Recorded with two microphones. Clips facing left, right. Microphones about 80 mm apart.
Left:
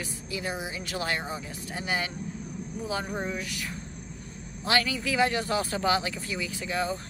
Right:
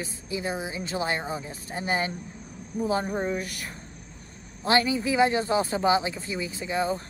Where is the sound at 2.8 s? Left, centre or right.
Right.